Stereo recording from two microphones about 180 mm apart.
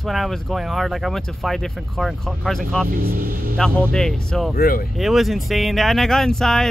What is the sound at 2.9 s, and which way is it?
Speech, 55° right (ahead or behind).